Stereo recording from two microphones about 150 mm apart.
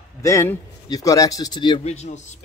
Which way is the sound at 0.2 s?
20° left (ahead or behind).